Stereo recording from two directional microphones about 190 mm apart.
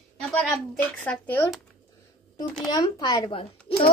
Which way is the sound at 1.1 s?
10° left (ahead or behind).